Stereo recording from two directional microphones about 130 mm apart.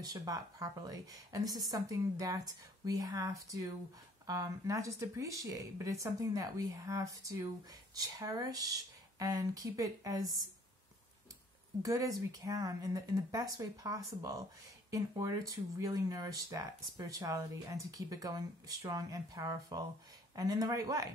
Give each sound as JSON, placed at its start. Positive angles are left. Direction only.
{"t": 0.0, "sound": "speech", "side_deg": -25}
{"t": 11.8, "sound": "speech", "side_deg": -25}